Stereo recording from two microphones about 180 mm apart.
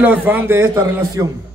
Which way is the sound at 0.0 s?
10° right (ahead or behind).